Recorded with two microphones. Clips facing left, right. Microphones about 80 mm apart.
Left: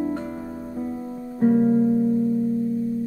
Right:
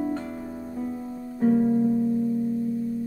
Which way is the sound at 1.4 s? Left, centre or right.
Left.